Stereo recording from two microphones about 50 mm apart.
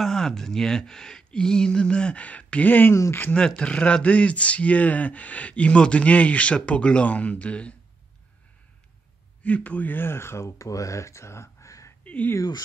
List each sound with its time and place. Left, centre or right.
0.0 s speech: centre; by 2.9 s left
2.9 s speech: left
3.3 s speech: centre
9.4 s speech: left
9.9 s speech: left
12.0 s a sound: left